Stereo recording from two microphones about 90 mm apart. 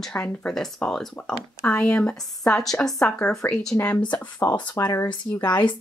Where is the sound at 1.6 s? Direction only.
20° left (ahead or behind).